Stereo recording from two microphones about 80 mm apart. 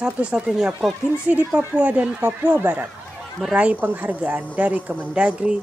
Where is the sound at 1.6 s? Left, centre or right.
Centre.